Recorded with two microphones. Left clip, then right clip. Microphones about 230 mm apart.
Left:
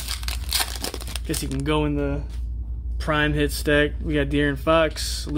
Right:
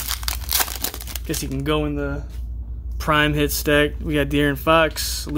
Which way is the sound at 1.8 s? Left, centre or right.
Centre.